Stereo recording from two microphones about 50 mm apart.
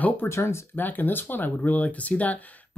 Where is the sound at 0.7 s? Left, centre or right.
Left.